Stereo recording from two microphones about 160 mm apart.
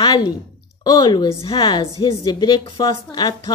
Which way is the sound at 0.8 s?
30° left (ahead or behind).